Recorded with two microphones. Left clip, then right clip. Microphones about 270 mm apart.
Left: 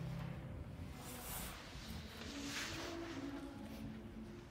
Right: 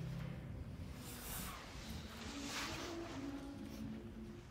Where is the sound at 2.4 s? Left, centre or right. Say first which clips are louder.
Right 1 dB; centre.